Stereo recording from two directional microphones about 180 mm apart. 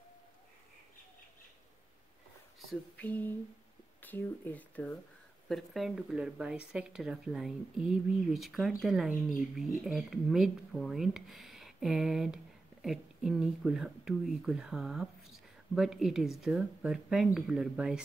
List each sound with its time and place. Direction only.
2.7 s a sound: 5° left (ahead or behind)
4.0 s speech: 10° left (ahead or behind)
5.5 s speech: centre (ahead or behind)